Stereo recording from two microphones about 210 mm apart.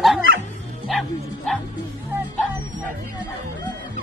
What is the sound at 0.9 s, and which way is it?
Bow-wow, centre (ahead or behind).